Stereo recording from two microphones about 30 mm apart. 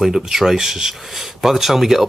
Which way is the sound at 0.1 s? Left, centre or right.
Centre.